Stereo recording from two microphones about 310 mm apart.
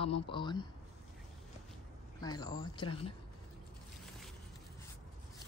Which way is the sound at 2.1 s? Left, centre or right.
Centre.